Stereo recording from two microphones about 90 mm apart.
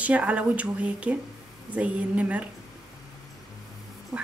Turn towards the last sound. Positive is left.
turn(degrees=-15)  # may be behind; listen again after turning